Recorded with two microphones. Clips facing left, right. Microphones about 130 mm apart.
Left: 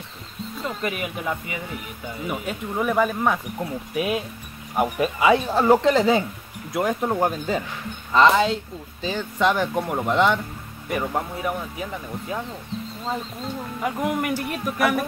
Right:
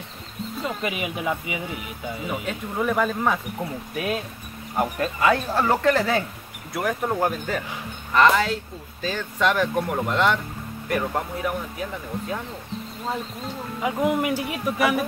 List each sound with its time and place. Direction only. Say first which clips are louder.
0.7 s speech: left 1 dB; 5° right (ahead or behind)
2.2 s speech: left 2 dB; 15° left (ahead or behind)
13.8 s speech: right 2 dB; 5° right (ahead or behind)